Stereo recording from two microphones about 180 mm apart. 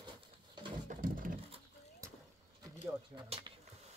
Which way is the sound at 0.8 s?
50° right (ahead or behind).